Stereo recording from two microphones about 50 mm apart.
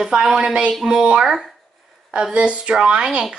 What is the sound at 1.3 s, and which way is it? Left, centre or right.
Speech, centre.